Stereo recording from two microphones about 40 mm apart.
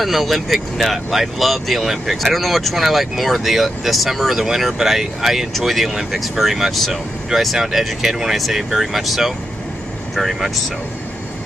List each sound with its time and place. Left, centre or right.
0.0 s speech: centre